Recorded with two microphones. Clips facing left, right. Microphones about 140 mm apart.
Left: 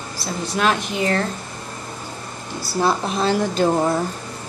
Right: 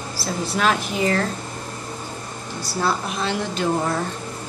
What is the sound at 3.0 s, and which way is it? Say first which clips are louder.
Speech: left 5 dB; 35° left (ahead or behind).